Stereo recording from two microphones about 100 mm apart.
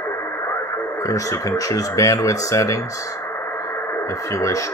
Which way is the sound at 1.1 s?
35° left (ahead or behind).